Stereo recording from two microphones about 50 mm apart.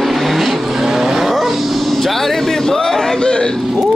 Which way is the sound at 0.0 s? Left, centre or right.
Centre.